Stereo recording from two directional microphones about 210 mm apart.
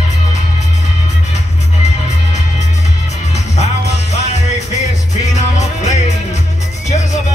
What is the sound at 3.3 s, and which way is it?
Music, 30° left (ahead or behind).